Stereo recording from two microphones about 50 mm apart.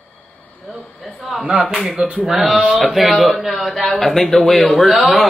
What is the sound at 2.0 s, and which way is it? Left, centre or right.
Speech, right.